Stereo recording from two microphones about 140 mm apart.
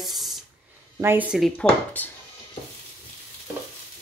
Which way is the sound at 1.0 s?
15° right (ahead or behind).